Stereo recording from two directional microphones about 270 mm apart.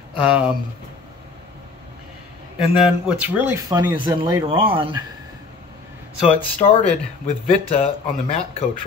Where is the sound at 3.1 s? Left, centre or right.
Centre.